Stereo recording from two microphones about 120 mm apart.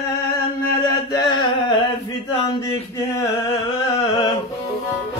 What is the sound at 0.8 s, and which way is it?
Chant, 40° left (ahead or behind).